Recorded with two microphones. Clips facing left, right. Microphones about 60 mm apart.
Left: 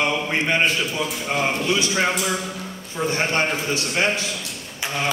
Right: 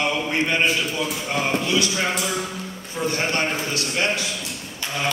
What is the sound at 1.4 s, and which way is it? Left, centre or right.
Speech, left.